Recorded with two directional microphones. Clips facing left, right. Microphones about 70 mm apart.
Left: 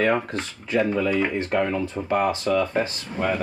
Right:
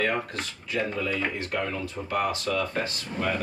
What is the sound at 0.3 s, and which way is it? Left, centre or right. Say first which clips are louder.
Speech: left 6 dB; left.